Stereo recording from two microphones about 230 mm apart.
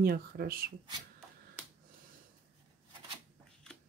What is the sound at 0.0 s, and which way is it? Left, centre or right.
Speech, right.